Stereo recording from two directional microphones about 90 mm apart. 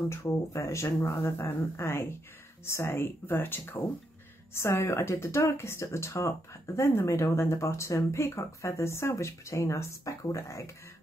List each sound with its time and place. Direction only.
0.1 s speech: 35° left (ahead or behind)